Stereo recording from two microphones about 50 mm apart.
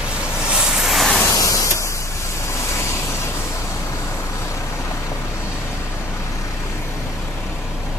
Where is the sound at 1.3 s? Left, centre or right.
Left.